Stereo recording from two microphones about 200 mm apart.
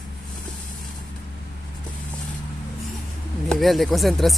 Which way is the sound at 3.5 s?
Centre (ahead or behind).